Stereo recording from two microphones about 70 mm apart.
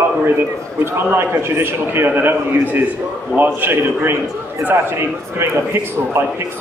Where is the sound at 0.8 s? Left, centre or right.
Right.